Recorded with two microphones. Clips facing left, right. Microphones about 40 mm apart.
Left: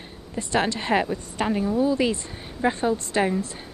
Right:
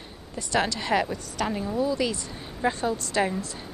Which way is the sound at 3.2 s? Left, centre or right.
Centre.